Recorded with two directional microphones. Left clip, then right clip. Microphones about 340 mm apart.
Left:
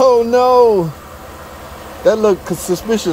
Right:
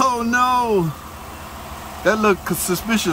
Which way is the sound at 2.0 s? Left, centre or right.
Right.